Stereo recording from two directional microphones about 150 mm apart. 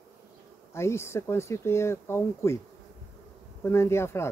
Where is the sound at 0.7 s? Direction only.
15° left (ahead or behind).